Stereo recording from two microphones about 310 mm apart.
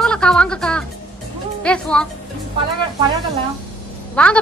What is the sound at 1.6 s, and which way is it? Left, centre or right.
Speech, centre.